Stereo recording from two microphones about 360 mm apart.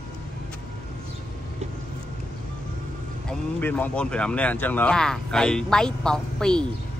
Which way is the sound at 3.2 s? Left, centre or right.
Centre.